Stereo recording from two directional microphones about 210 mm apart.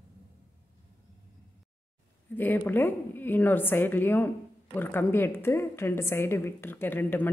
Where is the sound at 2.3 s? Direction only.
10° left (ahead or behind).